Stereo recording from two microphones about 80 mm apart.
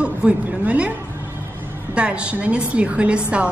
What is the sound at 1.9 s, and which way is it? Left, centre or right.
A woman's voice, centre.